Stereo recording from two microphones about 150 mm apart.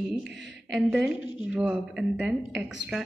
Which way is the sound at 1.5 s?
5° right (ahead or behind).